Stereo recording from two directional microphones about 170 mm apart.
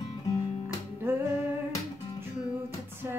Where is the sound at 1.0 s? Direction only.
15° right (ahead or behind).